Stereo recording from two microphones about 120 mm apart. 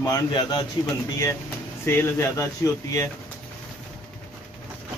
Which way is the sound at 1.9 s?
20° left (ahead or behind).